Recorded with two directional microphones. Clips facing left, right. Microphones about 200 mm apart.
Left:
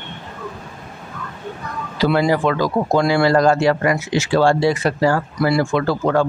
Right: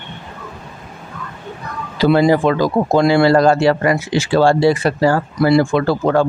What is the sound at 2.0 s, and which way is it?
Speech, 25° right (ahead or behind).